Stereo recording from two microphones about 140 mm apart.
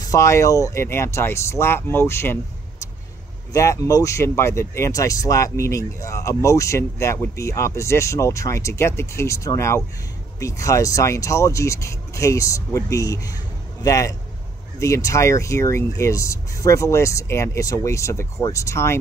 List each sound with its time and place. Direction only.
0.1 s speech: 20° left (ahead or behind)
3.5 s speech: 20° left (ahead or behind)